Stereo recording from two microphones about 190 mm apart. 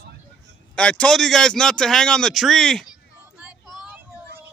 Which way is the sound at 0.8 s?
5° left (ahead or behind).